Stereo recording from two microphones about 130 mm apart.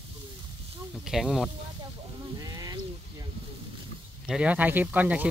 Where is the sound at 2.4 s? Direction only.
30° right (ahead or behind).